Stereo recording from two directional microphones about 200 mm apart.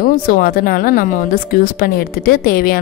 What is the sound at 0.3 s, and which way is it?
A woman's voice, 45° left (ahead or behind).